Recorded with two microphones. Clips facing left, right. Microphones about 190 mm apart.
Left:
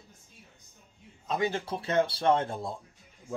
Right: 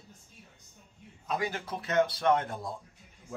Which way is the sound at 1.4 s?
25° left (ahead or behind).